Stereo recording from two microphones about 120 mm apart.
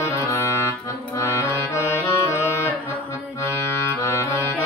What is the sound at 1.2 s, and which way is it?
Accordion, 25° left (ahead or behind).